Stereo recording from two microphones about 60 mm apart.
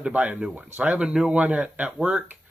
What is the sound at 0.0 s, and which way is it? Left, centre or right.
Speech, right.